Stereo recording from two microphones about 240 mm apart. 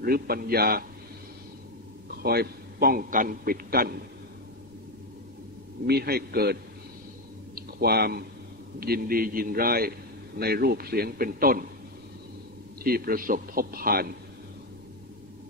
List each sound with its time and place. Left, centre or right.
0.0 s a man's voice: right
2.2 s a man's voice: right
5.9 s a man's voice: right
7.5 s a sound: right
8.7 s a man's voice: right
12.8 s a man's voice: right